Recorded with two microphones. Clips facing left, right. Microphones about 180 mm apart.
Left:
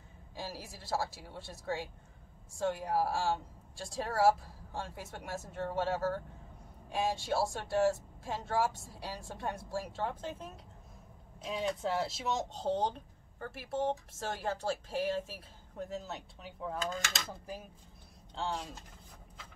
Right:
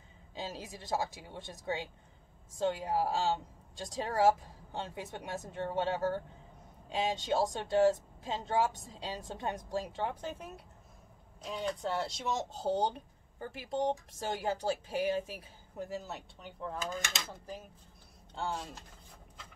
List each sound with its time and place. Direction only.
0.3 s speech: 20° right (ahead or behind)
11.4 s speech: 5° left (ahead or behind)